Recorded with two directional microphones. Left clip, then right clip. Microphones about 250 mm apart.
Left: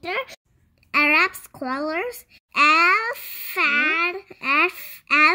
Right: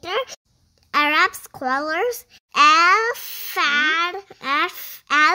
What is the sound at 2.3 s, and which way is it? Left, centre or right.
A child's voice, right.